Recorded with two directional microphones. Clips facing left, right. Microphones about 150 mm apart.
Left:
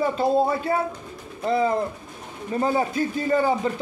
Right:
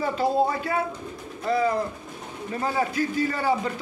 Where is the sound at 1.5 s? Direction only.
25° left (ahead or behind).